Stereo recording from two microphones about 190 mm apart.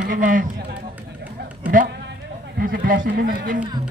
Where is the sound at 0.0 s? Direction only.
45° right (ahead or behind).